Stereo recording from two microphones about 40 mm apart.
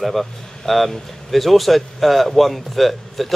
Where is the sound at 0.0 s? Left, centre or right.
Centre.